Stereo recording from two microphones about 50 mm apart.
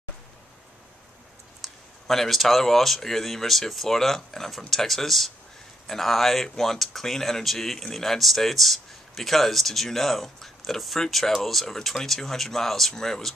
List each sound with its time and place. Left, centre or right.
1.6 s speech: centre